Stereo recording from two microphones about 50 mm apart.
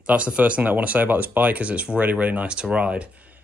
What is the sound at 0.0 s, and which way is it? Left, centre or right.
Speech, right.